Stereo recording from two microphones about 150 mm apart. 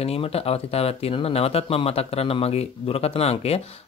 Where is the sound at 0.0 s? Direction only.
40° left (ahead or behind).